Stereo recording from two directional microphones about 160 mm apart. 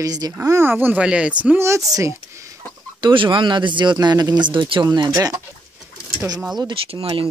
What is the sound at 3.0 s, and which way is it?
Speech, 30° right (ahead or behind).